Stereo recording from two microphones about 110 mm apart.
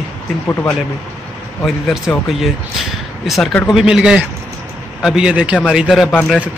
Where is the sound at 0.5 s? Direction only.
20° left (ahead or behind).